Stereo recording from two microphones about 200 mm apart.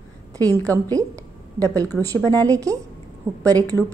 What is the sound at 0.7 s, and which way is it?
A woman's voice, 15° right (ahead or behind).